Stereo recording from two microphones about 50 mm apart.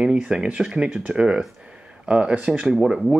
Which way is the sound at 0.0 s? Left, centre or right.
Centre.